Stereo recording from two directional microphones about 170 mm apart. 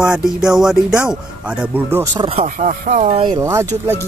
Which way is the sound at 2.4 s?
50° right (ahead or behind).